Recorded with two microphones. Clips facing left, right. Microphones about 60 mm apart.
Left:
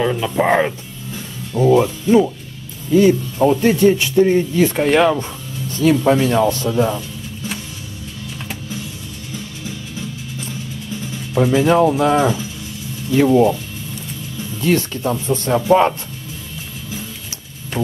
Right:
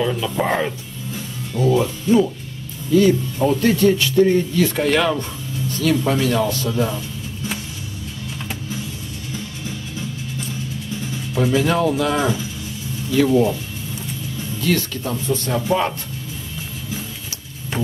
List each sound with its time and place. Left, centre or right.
0.0 s speech: left
11.3 s speech: left
14.6 s speech: left